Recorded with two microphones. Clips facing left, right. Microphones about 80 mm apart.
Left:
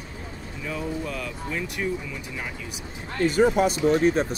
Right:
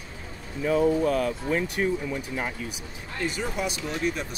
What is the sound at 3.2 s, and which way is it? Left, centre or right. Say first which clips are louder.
Speech: left 10 dB; left.